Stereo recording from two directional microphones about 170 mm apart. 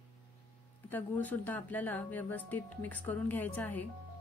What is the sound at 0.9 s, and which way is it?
Speech, 10° left (ahead or behind).